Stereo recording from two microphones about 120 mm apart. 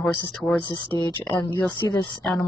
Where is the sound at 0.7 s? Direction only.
35° left (ahead or behind).